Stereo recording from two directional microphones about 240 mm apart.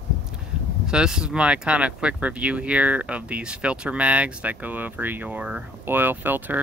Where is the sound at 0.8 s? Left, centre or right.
Centre.